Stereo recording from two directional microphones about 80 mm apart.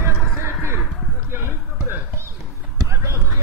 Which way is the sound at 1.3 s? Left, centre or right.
Right.